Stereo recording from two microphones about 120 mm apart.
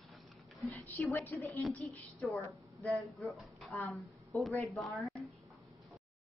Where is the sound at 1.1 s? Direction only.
20° left (ahead or behind).